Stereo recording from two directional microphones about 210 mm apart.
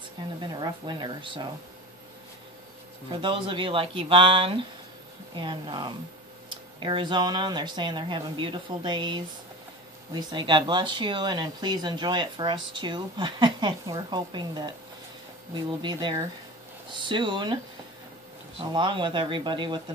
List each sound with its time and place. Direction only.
0.4 s speech: 20° right (ahead or behind)
3.1 s speech: 25° right (ahead or behind)
18.6 s speech: 25° right (ahead or behind)